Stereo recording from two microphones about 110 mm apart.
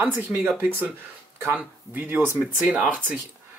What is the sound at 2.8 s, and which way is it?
Speech, 15° right (ahead or behind).